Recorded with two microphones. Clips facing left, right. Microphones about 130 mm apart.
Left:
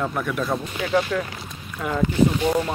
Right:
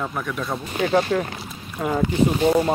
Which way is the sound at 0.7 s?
40° right (ahead or behind).